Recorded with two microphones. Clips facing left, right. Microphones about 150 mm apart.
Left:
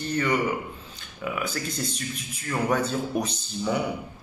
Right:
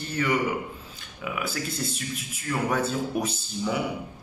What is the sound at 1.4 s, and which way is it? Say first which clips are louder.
A man's voice: right 2 dB; 5° right (ahead or behind).